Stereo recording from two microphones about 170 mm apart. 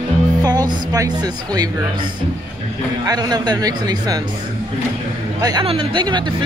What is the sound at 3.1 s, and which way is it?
Speech, 25° right (ahead or behind).